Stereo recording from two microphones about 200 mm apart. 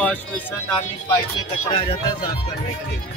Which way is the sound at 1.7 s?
25° left (ahead or behind).